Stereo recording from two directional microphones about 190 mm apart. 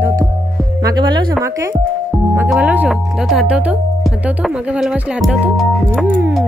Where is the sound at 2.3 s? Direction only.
5° right (ahead or behind).